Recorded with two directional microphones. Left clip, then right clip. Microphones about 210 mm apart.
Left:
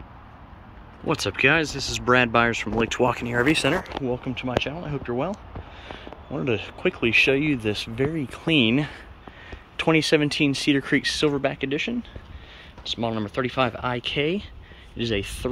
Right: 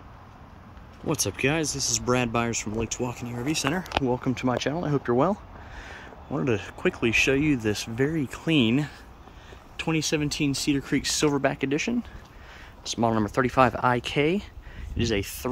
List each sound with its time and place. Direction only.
1.0 s speech: 10° right (ahead or behind)
4.4 s speech: 25° right (ahead or behind)
6.3 s speech: 10° right (ahead or behind)
10.1 s speech: 5° right (ahead or behind)
13.0 s speech: 25° right (ahead or behind)